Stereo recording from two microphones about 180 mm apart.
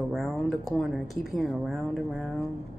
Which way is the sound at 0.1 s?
Centre (ahead or behind).